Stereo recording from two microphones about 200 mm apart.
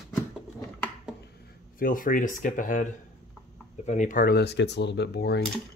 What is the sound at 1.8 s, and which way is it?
Speech, 45° left (ahead or behind).